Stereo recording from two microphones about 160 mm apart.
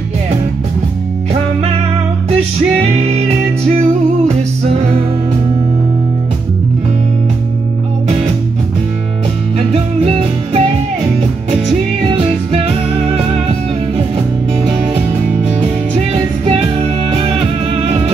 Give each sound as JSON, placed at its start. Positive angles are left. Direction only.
{"t": 2.8, "sound": "music", "side_deg": -40}
{"t": 9.6, "sound": "music", "side_deg": -40}
{"t": 12.2, "sound": "music", "side_deg": -35}
{"t": 15.9, "sound": "music", "side_deg": -40}